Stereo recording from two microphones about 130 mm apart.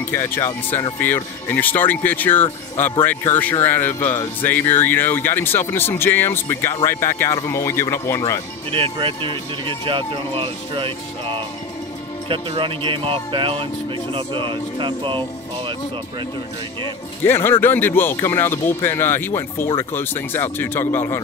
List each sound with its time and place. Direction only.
0.1 s speech: 15° left (ahead or behind)
8.7 s speech: 45° right (ahead or behind)
12.3 s speech: 45° right (ahead or behind)
17.2 s speech: 20° left (ahead or behind)